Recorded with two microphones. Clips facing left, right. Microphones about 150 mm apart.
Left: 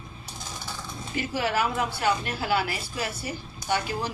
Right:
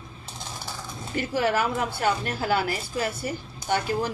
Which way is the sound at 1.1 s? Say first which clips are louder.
Right 3 dB; 45° right (ahead or behind).